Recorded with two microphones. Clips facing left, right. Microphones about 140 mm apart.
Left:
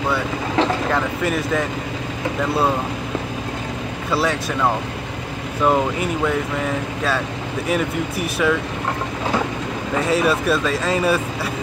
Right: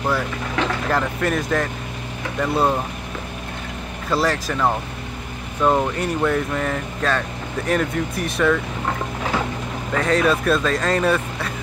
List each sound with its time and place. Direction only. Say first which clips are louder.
0.6 s speech: left 4 dB; 30° left (ahead or behind)
0.9 s speech: even; centre (ahead or behind)
4.1 s speech: even; centre (ahead or behind)
5.6 s speech: left 1 dB; 5° left (ahead or behind)
9.9 s speech: even; 10° left (ahead or behind)